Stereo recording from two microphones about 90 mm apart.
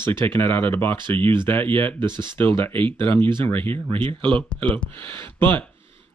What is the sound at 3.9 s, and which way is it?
Speech, 90° right.